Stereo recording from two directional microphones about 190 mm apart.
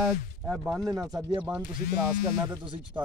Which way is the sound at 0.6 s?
15° right (ahead or behind).